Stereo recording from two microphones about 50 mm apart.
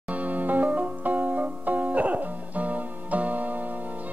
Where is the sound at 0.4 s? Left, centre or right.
Right.